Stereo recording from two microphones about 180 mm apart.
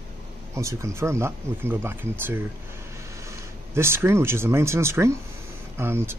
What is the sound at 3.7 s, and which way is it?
Speech, 15° right (ahead or behind).